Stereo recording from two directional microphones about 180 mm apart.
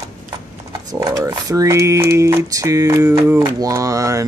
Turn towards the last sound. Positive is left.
turn(degrees=-20)  # may be behind; listen again after turning